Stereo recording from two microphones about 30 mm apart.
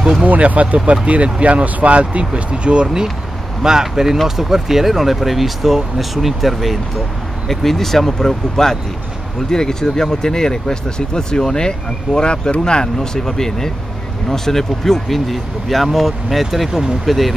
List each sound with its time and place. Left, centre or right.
0.4 s speech: right
3.6 s speech: centre
7.4 s speech: centre